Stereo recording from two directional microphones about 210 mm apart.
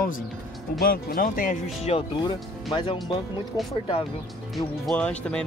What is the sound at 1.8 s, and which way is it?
Speech, 25° left (ahead or behind).